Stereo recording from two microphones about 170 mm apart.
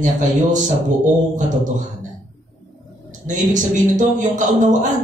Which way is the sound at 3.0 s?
45° right (ahead or behind).